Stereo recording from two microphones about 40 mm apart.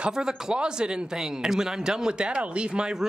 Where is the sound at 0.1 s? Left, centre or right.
Centre.